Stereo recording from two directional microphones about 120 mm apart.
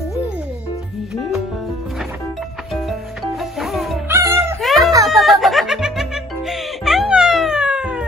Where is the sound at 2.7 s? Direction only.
Centre (ahead or behind).